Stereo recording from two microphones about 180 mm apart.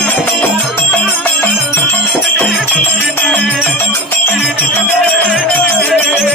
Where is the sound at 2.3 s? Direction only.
5° left (ahead or behind).